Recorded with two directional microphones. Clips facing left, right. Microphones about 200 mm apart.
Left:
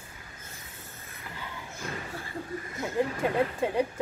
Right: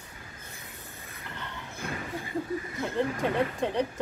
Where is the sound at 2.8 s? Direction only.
5° left (ahead or behind).